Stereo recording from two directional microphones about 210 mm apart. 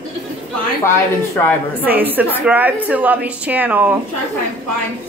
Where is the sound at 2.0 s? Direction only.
10° right (ahead or behind).